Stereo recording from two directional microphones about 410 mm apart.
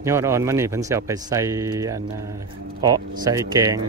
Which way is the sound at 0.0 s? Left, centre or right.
Centre.